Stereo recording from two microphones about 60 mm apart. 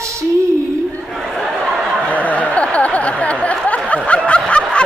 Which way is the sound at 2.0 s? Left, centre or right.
Left.